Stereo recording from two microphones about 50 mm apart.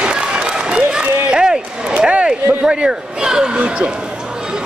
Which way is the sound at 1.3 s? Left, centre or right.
Centre.